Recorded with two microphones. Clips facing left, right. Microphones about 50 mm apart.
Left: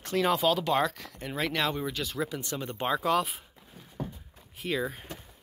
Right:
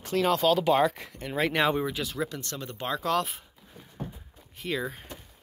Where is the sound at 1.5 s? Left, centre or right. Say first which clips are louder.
Right 5 dB; centre.